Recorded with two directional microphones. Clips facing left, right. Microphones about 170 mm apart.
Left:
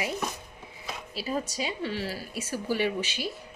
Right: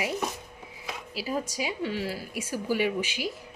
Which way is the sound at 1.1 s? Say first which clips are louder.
Even; 10° right (ahead or behind).